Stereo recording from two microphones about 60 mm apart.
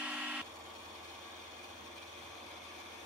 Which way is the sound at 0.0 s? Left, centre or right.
Centre.